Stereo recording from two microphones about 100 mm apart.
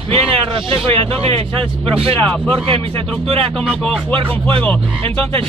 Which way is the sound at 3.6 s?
Centre (ahead or behind).